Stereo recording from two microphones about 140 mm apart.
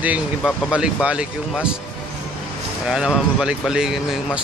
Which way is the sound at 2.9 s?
5° right (ahead or behind).